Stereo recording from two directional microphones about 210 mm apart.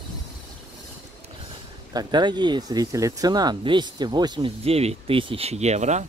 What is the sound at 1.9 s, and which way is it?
Speech, 20° right (ahead or behind).